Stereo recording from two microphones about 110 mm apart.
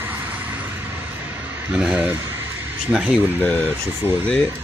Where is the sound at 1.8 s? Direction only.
5° right (ahead or behind).